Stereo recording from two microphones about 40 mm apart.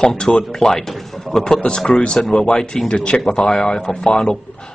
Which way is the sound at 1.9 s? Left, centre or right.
Left.